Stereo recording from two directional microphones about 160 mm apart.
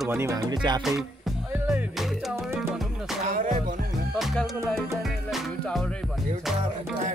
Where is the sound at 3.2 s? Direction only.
60° right (ahead or behind).